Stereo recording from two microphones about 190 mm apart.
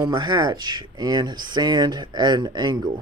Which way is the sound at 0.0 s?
20° right (ahead or behind).